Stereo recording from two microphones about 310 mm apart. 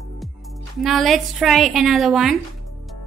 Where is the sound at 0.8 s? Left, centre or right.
Centre.